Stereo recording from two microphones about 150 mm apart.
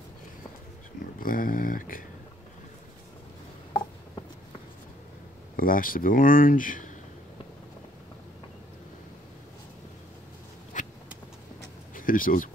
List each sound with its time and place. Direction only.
1.2 s speech: 70° left (ahead or behind)
5.6 s speech: 70° left (ahead or behind)
10.8 s vehicle: 55° left (ahead or behind)
11.9 s speech: 65° left (ahead or behind)